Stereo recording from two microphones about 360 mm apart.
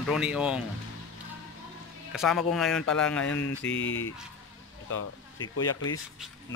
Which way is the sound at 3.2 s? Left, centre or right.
Left.